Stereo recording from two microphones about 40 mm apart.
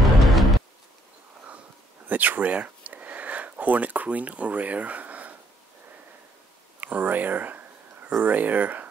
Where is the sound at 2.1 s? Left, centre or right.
Right.